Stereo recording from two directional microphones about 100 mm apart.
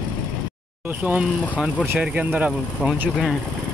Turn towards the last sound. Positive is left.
turn(degrees=-15)  # may be behind; listen again after turning